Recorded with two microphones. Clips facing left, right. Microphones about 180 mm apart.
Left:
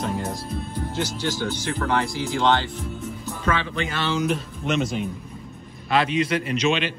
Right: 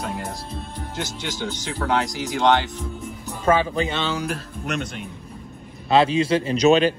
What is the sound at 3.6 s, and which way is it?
Speech, 35° right (ahead or behind).